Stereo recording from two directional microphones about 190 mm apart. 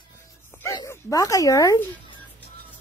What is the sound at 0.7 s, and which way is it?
Speech, 15° left (ahead or behind).